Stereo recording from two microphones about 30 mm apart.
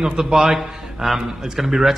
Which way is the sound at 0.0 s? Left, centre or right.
Centre.